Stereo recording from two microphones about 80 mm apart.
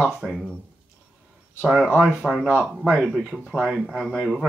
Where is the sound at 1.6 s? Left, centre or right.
Centre.